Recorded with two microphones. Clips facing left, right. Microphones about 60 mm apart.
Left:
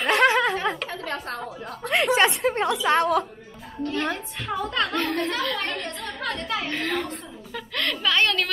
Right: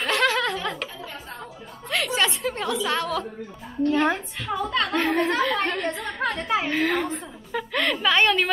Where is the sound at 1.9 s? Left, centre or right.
Left.